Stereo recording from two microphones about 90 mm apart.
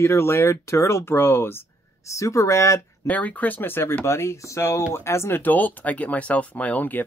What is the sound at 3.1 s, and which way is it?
Speech, 15° left (ahead or behind).